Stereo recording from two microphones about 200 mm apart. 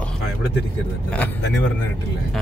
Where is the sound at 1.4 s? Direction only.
60° left (ahead or behind).